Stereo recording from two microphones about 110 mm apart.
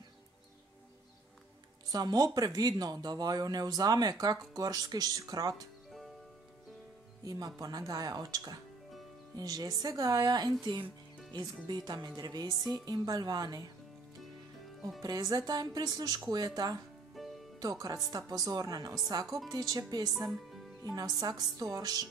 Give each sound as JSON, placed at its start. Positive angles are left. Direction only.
{"t": 1.9, "sound": "speech", "side_deg": -35}
{"t": 7.2, "sound": "speech", "side_deg": -35}
{"t": 15.0, "sound": "speech", "side_deg": -35}
{"t": 17.1, "sound": "music", "side_deg": 0}
{"t": 17.6, "sound": "speech", "side_deg": -35}